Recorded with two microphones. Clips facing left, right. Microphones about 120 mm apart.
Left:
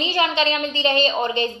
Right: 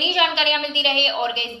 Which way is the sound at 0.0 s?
40° left (ahead or behind).